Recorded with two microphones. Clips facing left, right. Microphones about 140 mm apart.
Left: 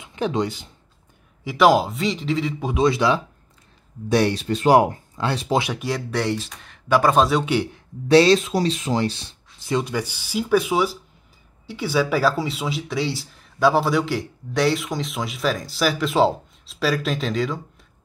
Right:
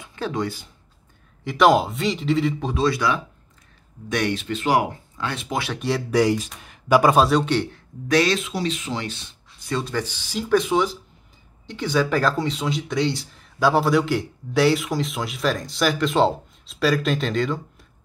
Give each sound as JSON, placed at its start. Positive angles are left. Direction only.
{"t": 0.0, "sound": "speech", "side_deg": 20}
{"t": 1.4, "sound": "speech", "side_deg": 5}
{"t": 2.6, "sound": "a man's voice", "side_deg": 15}
{"t": 4.1, "sound": "speech", "side_deg": 35}
{"t": 5.8, "sound": "speech", "side_deg": 0}
{"t": 7.2, "sound": "speech", "side_deg": 5}
{"t": 8.1, "sound": "speech", "side_deg": 30}
{"t": 9.7, "sound": "speech", "side_deg": 15}